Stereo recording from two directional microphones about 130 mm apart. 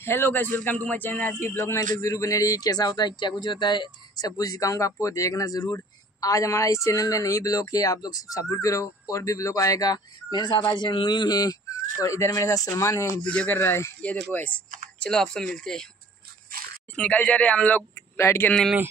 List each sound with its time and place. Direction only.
0.0 s speech: 15° left (ahead or behind)
13.2 s speech: 10° left (ahead or behind)
16.9 s speech: 10° left (ahead or behind)